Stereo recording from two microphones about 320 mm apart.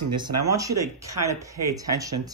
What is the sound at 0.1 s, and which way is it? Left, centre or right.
Speech, centre.